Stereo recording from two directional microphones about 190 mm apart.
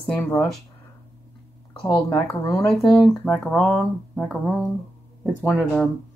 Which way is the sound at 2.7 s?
Centre (ahead or behind).